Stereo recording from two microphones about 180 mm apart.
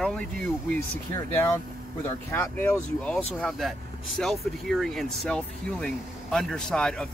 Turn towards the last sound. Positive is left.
turn(degrees=5)  # may be behind; listen again after turning